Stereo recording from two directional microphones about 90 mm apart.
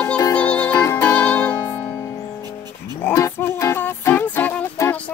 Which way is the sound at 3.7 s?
25° left (ahead or behind).